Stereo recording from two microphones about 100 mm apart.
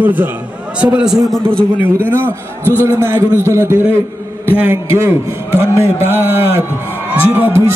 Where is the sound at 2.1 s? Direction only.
20° left (ahead or behind).